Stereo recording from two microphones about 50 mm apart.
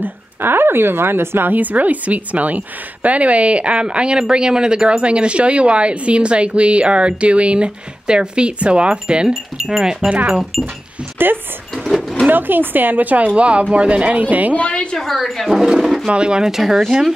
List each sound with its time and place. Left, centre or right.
0.0 s speech: right
1.5 s a woman's voice: right
9.3 s speech: centre
10.0 s a woman's voice: right
11.2 s speech: right
11.7 s drawer open or close: centre
12.3 s a woman's voice: right
14.6 s a woman's voice: left
15.0 s speech: centre